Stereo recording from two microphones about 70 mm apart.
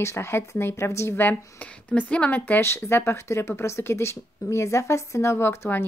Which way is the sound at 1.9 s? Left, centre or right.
Centre.